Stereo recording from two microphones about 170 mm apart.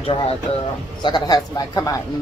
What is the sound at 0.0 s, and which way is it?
Speech, 35° left (ahead or behind).